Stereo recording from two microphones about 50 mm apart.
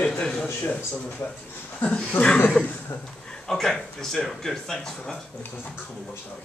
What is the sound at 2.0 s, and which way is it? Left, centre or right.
Speech, left.